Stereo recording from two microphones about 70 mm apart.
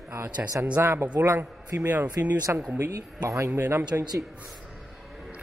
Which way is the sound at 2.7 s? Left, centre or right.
Right.